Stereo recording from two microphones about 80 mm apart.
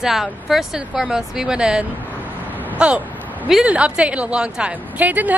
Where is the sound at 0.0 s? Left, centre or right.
Centre.